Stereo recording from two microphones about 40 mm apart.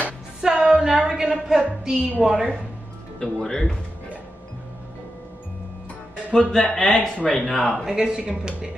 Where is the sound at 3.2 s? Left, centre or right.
Centre.